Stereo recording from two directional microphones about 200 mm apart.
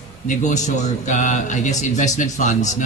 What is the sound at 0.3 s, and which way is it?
A man's voice, 35° left (ahead or behind).